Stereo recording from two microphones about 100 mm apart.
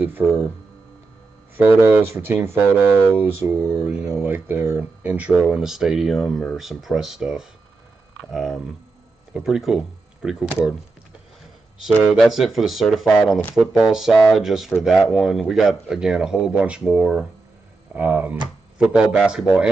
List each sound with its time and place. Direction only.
0.2 s speech: 5° left (ahead or behind)
1.6 s speech: 20° right (ahead or behind)
4.2 s speech: 20° right (ahead or behind)
11.8 s speech: 5° right (ahead or behind)